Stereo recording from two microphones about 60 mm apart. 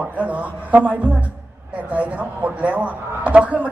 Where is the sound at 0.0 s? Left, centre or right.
Right.